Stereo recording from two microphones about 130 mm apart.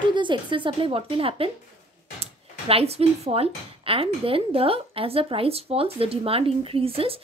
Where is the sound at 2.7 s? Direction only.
50° right (ahead or behind).